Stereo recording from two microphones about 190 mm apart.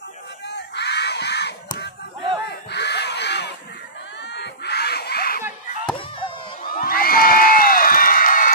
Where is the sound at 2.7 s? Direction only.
65° left (ahead or behind).